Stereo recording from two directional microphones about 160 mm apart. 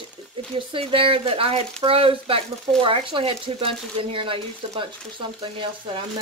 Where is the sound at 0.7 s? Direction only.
35° right (ahead or behind).